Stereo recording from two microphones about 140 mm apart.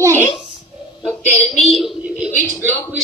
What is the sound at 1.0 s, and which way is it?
A man's voice, 10° left (ahead or behind).